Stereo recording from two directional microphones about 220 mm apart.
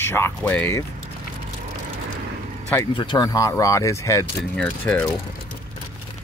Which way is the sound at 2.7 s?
20° left (ahead or behind).